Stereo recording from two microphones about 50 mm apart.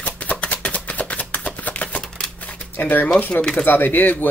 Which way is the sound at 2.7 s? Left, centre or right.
Left.